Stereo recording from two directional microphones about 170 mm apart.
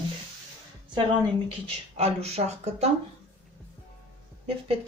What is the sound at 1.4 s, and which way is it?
Speech, 35° right (ahead or behind).